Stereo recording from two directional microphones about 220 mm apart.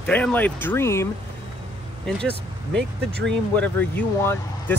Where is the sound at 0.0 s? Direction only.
5° left (ahead or behind).